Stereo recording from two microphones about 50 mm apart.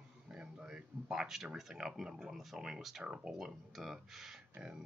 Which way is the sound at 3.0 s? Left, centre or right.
Centre.